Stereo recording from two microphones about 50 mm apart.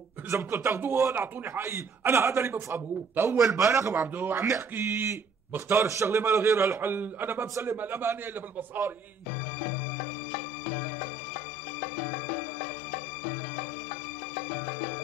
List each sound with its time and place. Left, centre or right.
0.3 s a man's voice: right
2.5 s a man's voice: right
3.3 s a man's voice: right
3.9 s a man's voice: right
5.8 s a man's voice: right
6.8 s a man's voice: right